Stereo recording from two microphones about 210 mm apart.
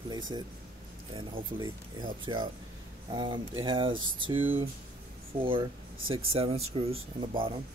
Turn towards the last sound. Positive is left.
turn(degrees=-25)  # may be behind; listen again after turning